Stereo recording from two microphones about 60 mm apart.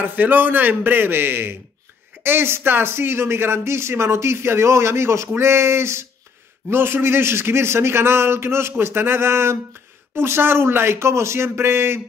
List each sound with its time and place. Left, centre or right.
0.0 s a man's voice: right